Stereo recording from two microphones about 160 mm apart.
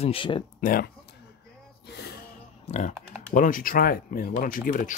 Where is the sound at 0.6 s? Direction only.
65° left (ahead or behind).